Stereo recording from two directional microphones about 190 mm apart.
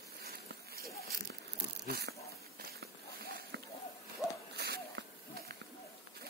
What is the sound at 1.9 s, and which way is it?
Speech, 60° right (ahead or behind).